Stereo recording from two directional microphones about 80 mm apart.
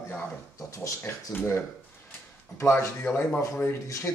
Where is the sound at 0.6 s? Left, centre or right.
Left.